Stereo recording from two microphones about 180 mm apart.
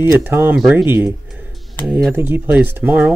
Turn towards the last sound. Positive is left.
turn(degrees=-10)  # may be behind; listen again after turning